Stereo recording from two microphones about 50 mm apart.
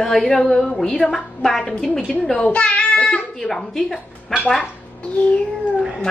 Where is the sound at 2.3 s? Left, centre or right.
Left.